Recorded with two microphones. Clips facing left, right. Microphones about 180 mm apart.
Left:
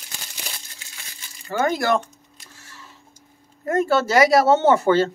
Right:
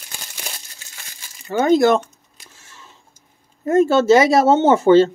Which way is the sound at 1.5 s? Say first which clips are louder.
Right 7 dB; 20° right (ahead or behind).